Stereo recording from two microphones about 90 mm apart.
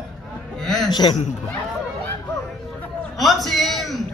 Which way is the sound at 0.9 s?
55° left (ahead or behind).